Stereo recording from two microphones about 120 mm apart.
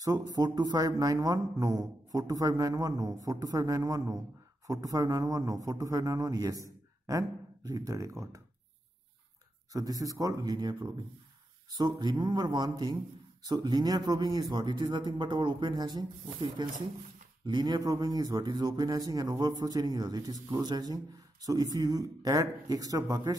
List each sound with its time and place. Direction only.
0.0 s a man's voice: 30° right (ahead or behind)
9.7 s a man's voice: 30° right (ahead or behind)